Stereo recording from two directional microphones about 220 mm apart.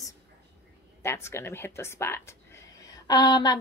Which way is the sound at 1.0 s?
10° left (ahead or behind).